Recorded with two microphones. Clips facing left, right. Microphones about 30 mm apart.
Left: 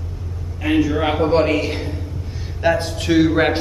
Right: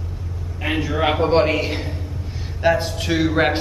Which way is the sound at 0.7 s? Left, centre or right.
Centre.